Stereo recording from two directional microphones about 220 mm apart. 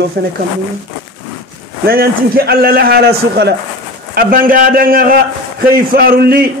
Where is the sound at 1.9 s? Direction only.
45° right (ahead or behind).